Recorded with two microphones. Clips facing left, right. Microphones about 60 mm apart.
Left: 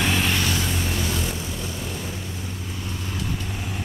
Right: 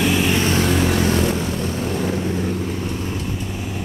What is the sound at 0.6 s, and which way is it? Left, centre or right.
Vehicle, right.